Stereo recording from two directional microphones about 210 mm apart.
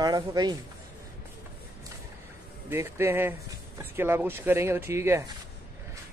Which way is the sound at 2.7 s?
10° right (ahead or behind).